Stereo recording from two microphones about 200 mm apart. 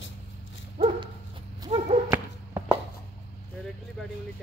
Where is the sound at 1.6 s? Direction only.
35° right (ahead or behind).